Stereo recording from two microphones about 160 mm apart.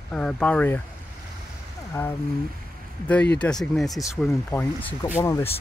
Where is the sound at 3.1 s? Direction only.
10° left (ahead or behind).